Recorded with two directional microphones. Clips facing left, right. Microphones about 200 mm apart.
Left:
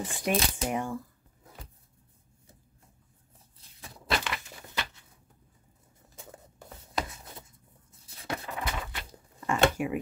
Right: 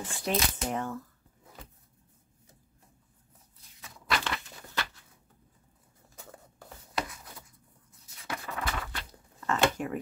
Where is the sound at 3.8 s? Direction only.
35° left (ahead or behind).